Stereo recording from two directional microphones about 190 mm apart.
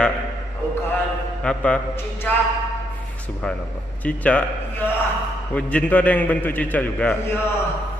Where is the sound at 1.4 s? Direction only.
5° left (ahead or behind).